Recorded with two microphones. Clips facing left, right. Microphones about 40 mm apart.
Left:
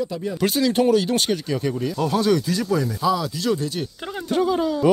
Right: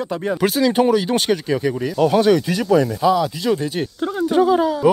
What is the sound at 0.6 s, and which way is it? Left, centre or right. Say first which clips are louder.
Speech: right 2 dB; right.